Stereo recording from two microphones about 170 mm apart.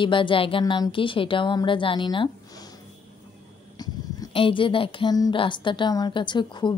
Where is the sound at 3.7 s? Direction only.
25° left (ahead or behind).